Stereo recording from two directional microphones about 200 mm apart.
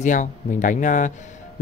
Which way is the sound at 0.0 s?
40° left (ahead or behind).